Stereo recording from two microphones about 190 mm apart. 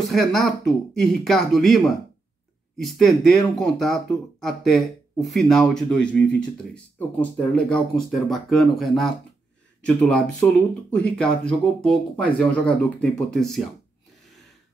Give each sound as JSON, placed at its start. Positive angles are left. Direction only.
{"t": 0.0, "sound": "speech", "side_deg": 0}
{"t": 2.8, "sound": "speech", "side_deg": 0}